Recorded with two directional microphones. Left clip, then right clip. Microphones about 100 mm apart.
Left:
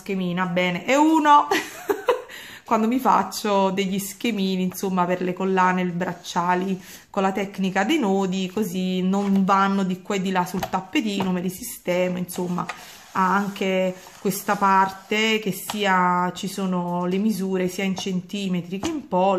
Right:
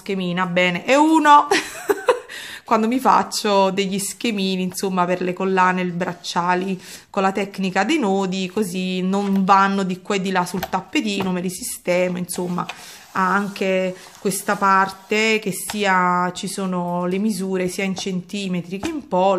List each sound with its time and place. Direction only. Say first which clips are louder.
0.1 s a woman's voice: right 4 dB; 40° right (ahead or behind)